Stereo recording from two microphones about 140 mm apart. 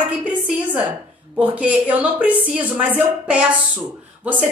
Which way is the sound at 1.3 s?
10° right (ahead or behind).